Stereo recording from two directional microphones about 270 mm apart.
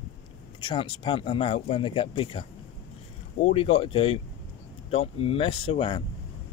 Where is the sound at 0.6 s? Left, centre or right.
Centre.